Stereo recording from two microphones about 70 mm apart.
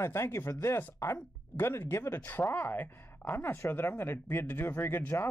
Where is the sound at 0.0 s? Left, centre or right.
Left.